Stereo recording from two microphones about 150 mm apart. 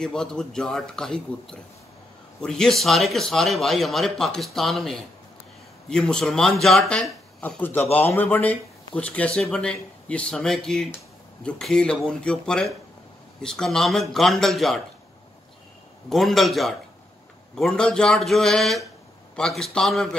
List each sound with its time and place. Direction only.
0.0 s a man's voice: 5° left (ahead or behind)
16.1 s speech: centre (ahead or behind)